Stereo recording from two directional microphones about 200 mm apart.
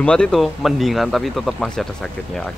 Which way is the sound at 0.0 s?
5° left (ahead or behind).